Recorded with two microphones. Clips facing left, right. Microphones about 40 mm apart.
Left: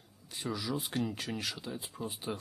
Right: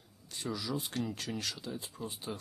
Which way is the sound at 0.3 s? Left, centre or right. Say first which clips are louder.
Left 1 dB; centre.